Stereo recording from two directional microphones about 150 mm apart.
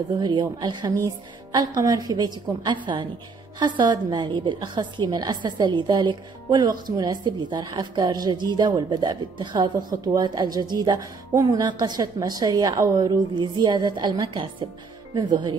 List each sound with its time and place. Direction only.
0.2 s a woman's voice: 30° right (ahead or behind)